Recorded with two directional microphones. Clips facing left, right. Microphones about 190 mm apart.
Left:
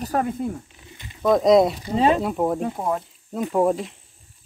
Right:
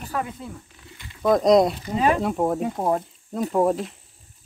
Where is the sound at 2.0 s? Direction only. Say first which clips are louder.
Left 2 dB; 25° left (ahead or behind).